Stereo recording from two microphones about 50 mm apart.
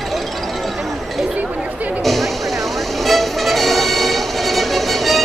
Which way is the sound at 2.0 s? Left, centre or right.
Centre.